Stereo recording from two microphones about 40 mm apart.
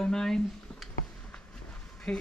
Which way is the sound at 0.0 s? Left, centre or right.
Centre.